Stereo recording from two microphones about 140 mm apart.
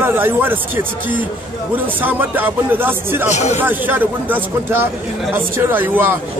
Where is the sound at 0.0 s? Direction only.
15° right (ahead or behind).